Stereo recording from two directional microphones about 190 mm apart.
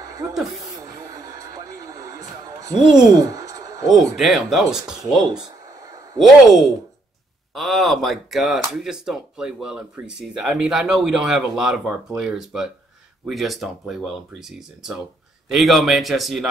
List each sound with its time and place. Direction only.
0.3 s speech: centre (ahead or behind)
0.8 s vehicle: 20° right (ahead or behind)
2.8 s speech: 5° right (ahead or behind)
3.2 s a sound: 20° right (ahead or behind)
4.2 s speech: centre (ahead or behind)